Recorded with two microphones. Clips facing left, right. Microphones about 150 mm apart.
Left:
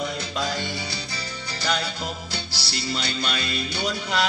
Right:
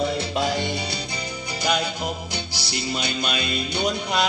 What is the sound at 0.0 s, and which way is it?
Music, 25° right (ahead or behind).